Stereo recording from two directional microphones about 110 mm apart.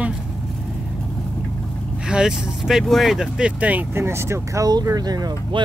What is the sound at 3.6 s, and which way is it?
Speech, 15° right (ahead or behind).